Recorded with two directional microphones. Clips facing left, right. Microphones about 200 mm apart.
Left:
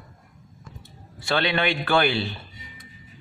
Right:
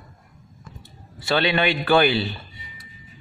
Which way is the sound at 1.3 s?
15° right (ahead or behind).